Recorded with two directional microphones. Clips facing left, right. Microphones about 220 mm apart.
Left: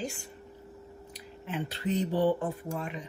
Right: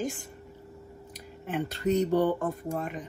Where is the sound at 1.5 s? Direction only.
45° right (ahead or behind).